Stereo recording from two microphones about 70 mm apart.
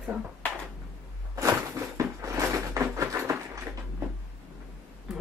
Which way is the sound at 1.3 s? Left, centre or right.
Right.